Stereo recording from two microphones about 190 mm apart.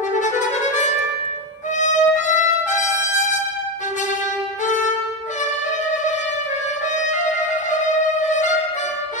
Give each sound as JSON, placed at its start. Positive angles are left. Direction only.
{"t": 0.1, "sound": "music", "side_deg": 40}
{"t": 4.6, "sound": "violin", "side_deg": 40}
{"t": 7.1, "sound": "music", "side_deg": 40}